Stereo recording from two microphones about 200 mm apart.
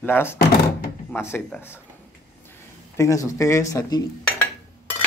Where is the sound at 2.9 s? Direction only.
15° left (ahead or behind).